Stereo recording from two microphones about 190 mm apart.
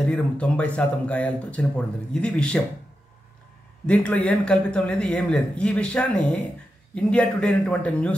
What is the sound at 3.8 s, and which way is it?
A man's voice, 5° left (ahead or behind).